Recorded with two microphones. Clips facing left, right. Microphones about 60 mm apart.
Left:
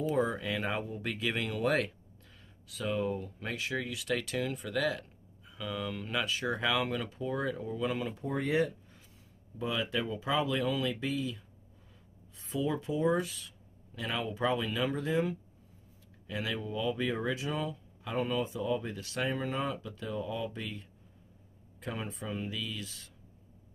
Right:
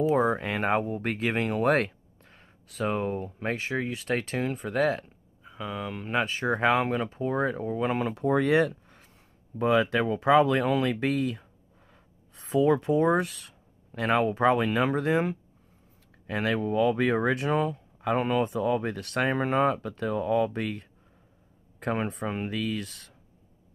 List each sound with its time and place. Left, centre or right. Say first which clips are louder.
0.3 s speech: right 8 dB; right
8.1 s speech: right 9 dB; right
9.6 s speech: right 10 dB; right